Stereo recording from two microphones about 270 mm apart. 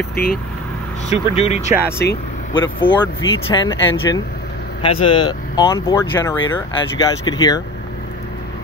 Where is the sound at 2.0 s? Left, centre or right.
Left.